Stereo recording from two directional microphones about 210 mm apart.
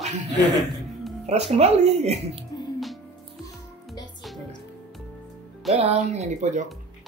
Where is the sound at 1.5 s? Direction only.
30° right (ahead or behind).